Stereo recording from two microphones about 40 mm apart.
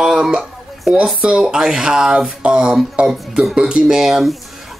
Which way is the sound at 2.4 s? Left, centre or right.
Right.